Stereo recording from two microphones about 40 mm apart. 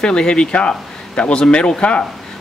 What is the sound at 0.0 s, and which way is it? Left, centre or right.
A man's voice, left.